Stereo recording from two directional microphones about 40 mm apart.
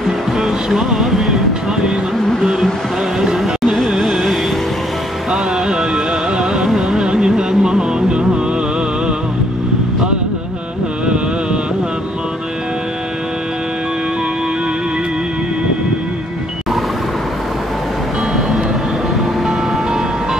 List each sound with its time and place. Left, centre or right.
0.4 s music: centre
3.2 s a sound: centre
5.3 s music: centre
6.7 s music: centre